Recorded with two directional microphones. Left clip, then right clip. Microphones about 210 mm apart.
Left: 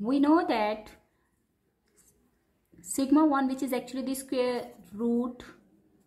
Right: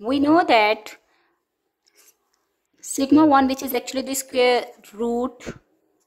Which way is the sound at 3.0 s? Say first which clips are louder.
Right 9 dB; 40° right (ahead or behind).